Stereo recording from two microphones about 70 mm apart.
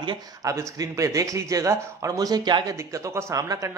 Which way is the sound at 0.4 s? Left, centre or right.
Right.